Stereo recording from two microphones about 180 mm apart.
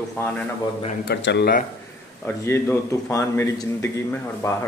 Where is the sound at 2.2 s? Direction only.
15° left (ahead or behind).